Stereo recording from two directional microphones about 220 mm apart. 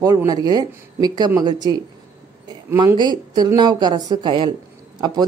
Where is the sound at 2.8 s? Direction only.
20° right (ahead or behind).